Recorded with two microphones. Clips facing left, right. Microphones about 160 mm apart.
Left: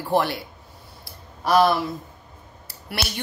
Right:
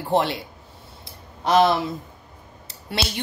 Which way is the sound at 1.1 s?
20° right (ahead or behind).